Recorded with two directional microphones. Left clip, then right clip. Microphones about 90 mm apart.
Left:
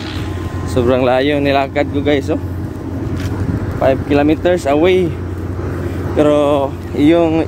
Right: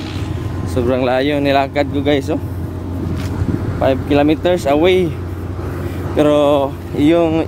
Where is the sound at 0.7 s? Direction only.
25° right (ahead or behind).